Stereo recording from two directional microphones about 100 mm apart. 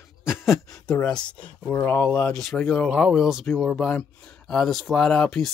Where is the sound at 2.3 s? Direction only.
5° left (ahead or behind).